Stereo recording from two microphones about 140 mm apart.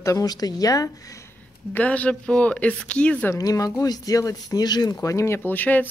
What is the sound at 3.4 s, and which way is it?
Speech, 25° left (ahead or behind).